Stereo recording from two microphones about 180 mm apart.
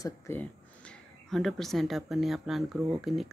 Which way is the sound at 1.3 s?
Centre (ahead or behind).